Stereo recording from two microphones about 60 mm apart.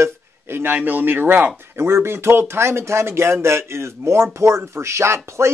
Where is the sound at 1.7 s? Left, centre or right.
Right.